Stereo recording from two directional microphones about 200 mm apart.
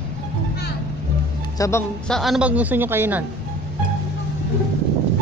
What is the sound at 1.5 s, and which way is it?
Speech, 15° left (ahead or behind).